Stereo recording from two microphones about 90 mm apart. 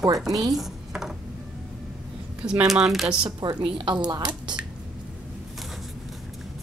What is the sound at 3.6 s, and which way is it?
Speech, 65° right (ahead or behind).